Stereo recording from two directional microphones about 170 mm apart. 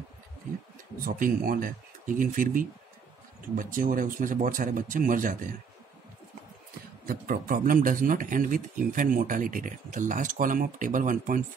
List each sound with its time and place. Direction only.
0.9 s speech: 55° right (ahead or behind)
7.1 s speech: 55° right (ahead or behind)